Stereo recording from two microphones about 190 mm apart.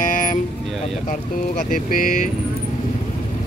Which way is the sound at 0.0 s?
45° left (ahead or behind).